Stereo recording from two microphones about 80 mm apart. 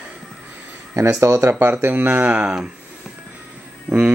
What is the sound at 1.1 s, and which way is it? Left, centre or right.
Speech, right.